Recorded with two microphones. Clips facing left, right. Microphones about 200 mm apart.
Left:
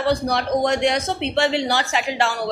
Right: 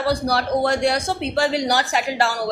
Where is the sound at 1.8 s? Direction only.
5° right (ahead or behind).